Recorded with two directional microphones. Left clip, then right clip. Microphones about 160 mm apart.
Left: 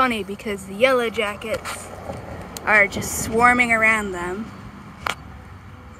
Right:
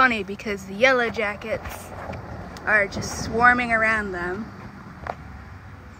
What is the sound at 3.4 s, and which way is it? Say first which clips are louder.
Speech: left 2 dB; 25° left (ahead or behind).